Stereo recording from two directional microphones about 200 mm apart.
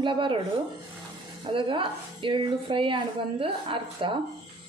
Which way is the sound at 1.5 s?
25° right (ahead or behind).